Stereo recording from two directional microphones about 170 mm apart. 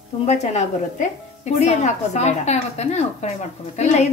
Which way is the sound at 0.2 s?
40° left (ahead or behind).